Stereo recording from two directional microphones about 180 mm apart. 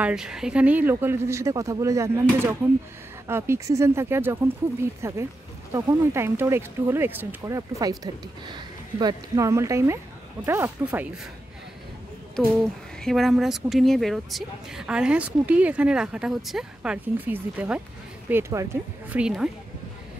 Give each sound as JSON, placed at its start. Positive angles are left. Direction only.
{"t": 0.0, "sound": "speech", "side_deg": -5}
{"t": 3.3, "sound": "speech", "side_deg": -15}
{"t": 12.4, "sound": "speech", "side_deg": 0}